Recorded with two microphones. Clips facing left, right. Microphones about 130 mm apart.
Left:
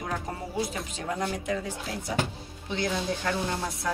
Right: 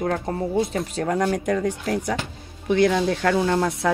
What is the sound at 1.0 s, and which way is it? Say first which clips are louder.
Speech: right 9 dB; 65° right (ahead or behind).